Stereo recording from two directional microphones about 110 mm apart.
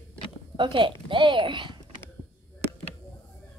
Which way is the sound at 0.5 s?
45° right (ahead or behind).